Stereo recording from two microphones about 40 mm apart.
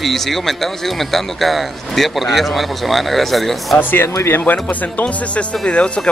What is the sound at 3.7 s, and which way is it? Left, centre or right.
Speech, left.